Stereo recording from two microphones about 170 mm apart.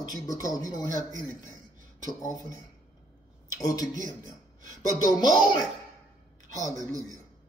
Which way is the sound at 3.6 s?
20° left (ahead or behind).